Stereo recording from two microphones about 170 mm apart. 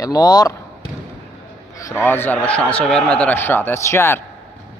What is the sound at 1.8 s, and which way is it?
A man's voice, 15° left (ahead or behind).